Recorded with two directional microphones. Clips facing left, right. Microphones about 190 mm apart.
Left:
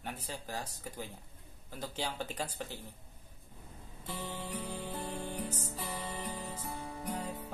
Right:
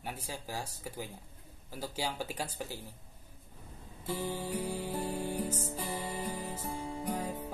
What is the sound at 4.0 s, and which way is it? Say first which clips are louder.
Music: right 6 dB; 10° right (ahead or behind).